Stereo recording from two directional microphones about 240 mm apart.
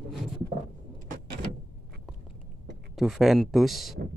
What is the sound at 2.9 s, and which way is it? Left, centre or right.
Speech, centre.